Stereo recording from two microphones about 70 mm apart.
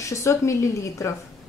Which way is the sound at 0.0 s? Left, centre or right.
Left.